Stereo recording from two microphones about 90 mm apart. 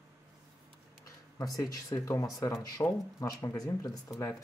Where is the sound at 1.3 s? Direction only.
40° left (ahead or behind).